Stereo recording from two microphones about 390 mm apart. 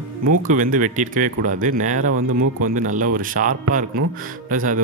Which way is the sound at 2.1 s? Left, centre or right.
Right.